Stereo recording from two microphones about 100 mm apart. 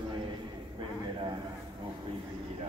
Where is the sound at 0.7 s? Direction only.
55° right (ahead or behind).